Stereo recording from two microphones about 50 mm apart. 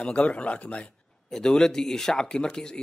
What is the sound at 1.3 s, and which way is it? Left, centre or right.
Speech, centre.